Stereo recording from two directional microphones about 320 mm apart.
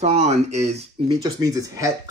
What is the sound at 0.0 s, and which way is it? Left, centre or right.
Speech, right.